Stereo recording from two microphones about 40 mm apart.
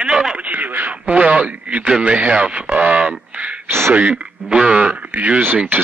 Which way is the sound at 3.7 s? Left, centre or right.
Right.